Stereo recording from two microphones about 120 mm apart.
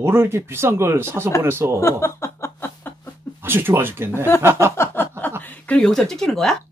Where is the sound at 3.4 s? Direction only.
20° right (ahead or behind).